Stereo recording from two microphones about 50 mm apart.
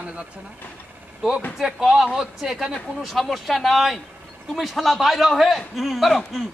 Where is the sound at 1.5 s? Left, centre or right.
Centre.